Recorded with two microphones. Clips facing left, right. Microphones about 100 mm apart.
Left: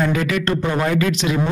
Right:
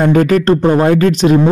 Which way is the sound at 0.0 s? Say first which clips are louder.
Right 9 dB; 45° right (ahead or behind).